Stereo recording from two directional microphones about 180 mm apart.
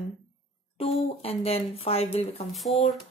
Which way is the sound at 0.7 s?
35° left (ahead or behind).